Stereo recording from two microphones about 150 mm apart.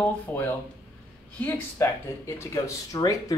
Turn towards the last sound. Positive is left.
turn(degrees=20)  # may be behind; listen again after turning